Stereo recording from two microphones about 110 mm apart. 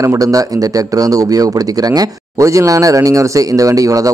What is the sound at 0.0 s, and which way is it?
A man's voice, 30° right (ahead or behind).